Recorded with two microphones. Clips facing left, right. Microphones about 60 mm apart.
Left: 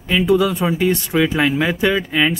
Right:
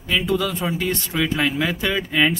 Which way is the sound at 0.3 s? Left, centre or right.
Centre.